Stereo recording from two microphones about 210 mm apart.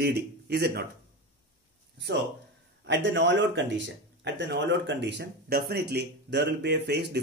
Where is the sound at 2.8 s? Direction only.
60° right (ahead or behind).